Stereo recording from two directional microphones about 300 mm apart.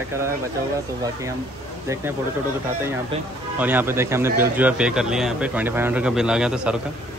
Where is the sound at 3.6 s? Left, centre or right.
Centre.